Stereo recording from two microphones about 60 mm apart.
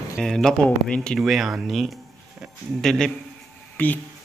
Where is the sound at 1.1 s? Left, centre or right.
Centre.